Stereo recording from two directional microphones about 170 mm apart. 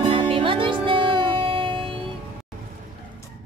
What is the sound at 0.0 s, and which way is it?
Music, 30° right (ahead or behind).